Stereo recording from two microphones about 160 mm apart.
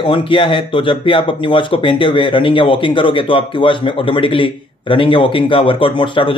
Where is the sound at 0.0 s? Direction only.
30° left (ahead or behind).